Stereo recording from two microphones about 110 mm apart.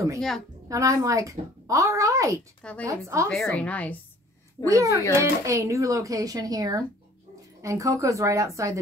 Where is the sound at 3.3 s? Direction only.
5° left (ahead or behind).